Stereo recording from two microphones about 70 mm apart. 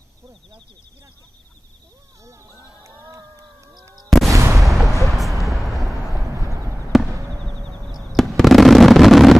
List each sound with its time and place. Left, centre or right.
2.2 s a sound: right
4.3 s artillery fire: right
4.6 s music: centre
6.2 s clip-clop: right
6.9 s basketball bounce: centre
7.9 s fireworks: centre